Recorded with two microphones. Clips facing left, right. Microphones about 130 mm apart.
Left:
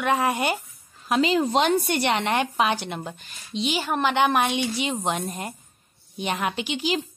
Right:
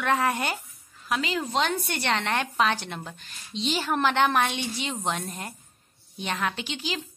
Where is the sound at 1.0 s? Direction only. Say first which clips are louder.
Left 7 dB; 25° left (ahead or behind).